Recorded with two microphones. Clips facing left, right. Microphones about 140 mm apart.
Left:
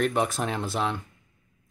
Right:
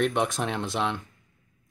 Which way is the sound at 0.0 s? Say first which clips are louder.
Even; centre (ahead or behind).